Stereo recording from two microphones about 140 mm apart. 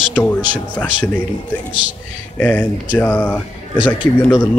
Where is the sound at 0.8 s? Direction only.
15° left (ahead or behind).